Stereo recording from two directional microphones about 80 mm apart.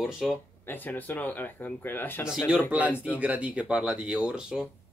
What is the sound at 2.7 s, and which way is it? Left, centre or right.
Speech, centre.